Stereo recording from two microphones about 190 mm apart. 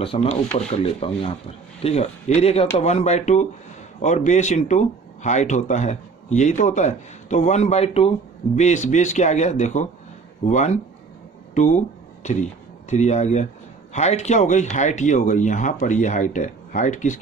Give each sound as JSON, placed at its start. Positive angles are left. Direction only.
{"t": 0.0, "sound": "speech", "side_deg": 30}
{"t": 11.5, "sound": "a sound", "side_deg": 40}
{"t": 12.9, "sound": "speech", "side_deg": 35}